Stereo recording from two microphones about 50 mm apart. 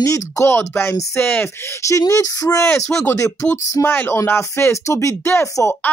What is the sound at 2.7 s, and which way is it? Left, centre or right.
Speech, left.